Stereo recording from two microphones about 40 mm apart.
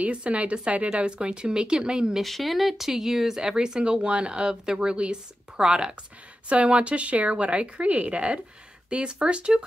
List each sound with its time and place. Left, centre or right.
0.0 s speech: right
2.2 s speech: centre
6.5 s speech: right